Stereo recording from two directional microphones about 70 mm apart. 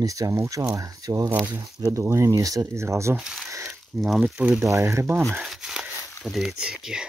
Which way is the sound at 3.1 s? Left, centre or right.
Centre.